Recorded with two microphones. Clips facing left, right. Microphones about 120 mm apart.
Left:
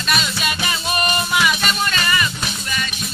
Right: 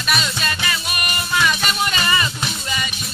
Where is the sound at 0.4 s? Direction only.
20° left (ahead or behind).